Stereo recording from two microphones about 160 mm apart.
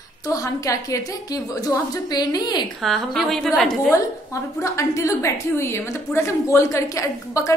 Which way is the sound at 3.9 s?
20° left (ahead or behind).